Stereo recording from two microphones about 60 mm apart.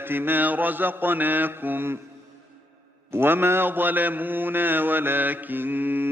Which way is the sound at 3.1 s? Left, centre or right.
Right.